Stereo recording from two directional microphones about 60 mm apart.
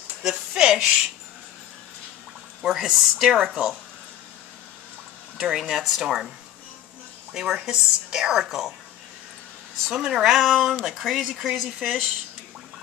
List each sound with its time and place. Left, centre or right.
0.3 s a woman's voice: centre
2.6 s a woman's voice: centre
5.4 s a woman's voice: centre
7.3 s a woman's voice: centre
9.8 s speech: centre